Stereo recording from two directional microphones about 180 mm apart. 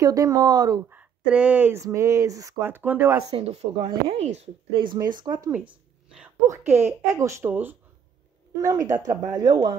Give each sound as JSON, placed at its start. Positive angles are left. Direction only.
{"t": 0.0, "sound": "speech", "side_deg": -20}
{"t": 0.8, "sound": "speech", "side_deg": -5}
{"t": 3.3, "sound": "speech", "side_deg": -35}